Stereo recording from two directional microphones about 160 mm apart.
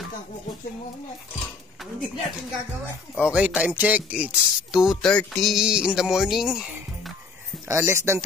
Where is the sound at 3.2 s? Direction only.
5° right (ahead or behind).